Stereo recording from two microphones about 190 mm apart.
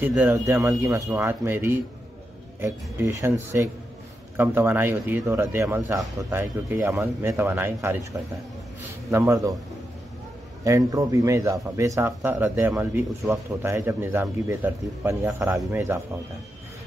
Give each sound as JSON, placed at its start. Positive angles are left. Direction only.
{"t": 0.0, "sound": "speech", "side_deg": -10}
{"t": 9.1, "sound": "speech", "side_deg": -15}
{"t": 10.6, "sound": "speech", "side_deg": -20}